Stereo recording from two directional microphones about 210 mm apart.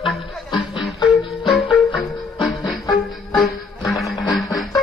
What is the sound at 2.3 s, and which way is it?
Music, 20° left (ahead or behind).